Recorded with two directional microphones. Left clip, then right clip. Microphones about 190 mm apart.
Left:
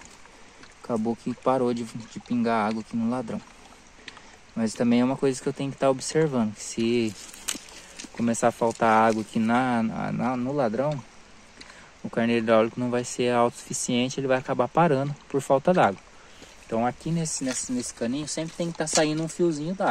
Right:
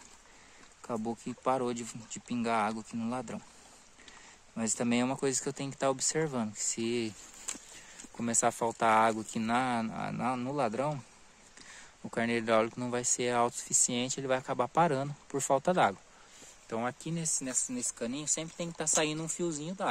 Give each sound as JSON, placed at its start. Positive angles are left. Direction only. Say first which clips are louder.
{"t": 0.8, "sound": "speech", "louder": "left 8 dB", "side_deg": -10}
{"t": 4.6, "sound": "speech", "louder": "left 7 dB", "side_deg": -20}
{"t": 8.2, "sound": "speech", "louder": "left 7 dB", "side_deg": -15}
{"t": 12.1, "sound": "speech", "louder": "left 7 dB", "side_deg": -15}